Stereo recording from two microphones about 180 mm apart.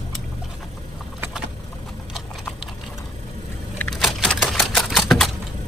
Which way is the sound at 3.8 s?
5° left (ahead or behind).